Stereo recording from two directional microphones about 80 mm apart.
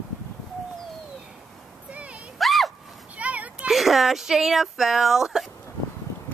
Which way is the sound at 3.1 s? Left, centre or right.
Centre.